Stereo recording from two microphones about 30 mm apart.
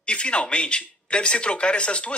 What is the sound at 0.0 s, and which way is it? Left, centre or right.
Speech, left.